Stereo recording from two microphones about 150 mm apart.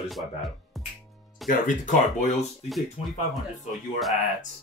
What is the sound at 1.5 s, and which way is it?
Speech, 55° left (ahead or behind).